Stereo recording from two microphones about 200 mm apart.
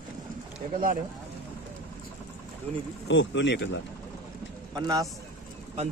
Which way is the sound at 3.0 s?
65° left (ahead or behind).